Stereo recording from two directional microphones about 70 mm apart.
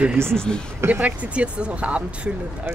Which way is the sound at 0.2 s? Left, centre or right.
Right.